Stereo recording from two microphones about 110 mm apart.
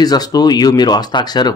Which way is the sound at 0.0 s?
35° left (ahead or behind).